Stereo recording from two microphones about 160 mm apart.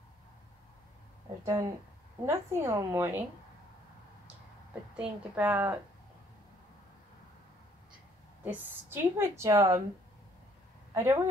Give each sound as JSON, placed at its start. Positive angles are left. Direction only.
{"t": 1.4, "sound": "a woman's voice", "side_deg": -20}
{"t": 4.9, "sound": "a woman's voice", "side_deg": -10}
{"t": 8.5, "sound": "a woman's voice", "side_deg": -10}
{"t": 10.9, "sound": "speech", "side_deg": -15}